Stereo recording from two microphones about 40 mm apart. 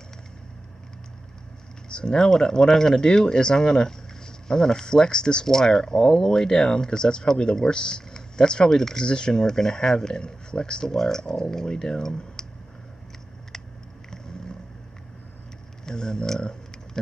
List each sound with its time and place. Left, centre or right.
1.9 s speech: left
15.8 s speech: centre